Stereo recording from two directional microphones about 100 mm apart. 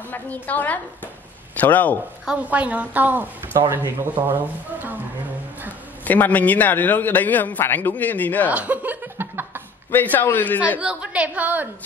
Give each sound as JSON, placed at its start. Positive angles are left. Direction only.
{"t": 0.1, "sound": "a man's voice", "side_deg": 15}
{"t": 2.2, "sound": "a woman's voice", "side_deg": -15}
{"t": 6.0, "sound": "a man's voice", "side_deg": 15}
{"t": 8.5, "sound": "chuckle", "side_deg": -15}
{"t": 10.1, "sound": "a man's voice", "side_deg": 20}
{"t": 10.8, "sound": "a woman's voice", "side_deg": -10}